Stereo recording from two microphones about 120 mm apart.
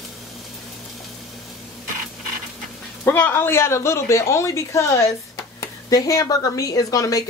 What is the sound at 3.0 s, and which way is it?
A woman's voice, 15° left (ahead or behind).